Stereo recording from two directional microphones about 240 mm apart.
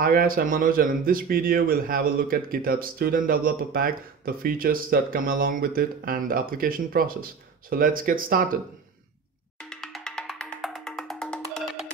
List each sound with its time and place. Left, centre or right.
0.0 s speech: right
9.6 s music: centre